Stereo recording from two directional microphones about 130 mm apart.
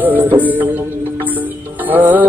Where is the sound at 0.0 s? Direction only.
15° right (ahead or behind).